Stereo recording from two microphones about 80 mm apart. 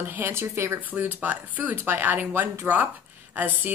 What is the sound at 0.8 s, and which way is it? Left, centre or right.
Speech, right.